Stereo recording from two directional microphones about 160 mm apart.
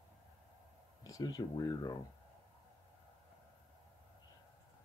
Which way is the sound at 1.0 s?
25° left (ahead or behind).